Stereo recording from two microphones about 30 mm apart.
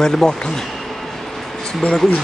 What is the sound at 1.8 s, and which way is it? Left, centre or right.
Speech, left.